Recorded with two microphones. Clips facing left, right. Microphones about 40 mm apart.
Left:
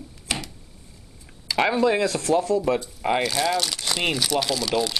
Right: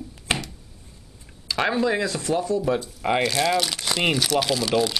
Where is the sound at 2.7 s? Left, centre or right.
Centre.